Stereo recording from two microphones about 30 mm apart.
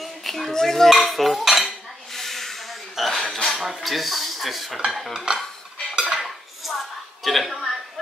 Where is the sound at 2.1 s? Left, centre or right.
Centre.